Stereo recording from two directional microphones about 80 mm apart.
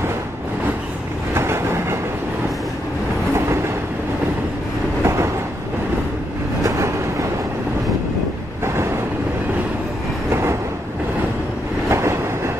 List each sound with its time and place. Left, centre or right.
1.3 s train: right
5.0 s train: right
6.6 s train: right
11.9 s train: right